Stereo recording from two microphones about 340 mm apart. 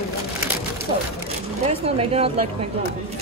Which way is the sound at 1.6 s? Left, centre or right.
Centre.